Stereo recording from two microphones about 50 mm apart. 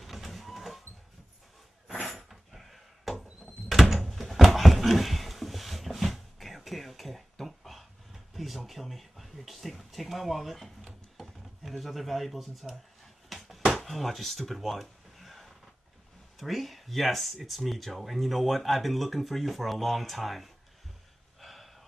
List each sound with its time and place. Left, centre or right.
0.0 s vehicle: centre
2.0 s door: centre
13.7 s a sound: centre
16.3 s speech: centre
21.4 s gasp: centre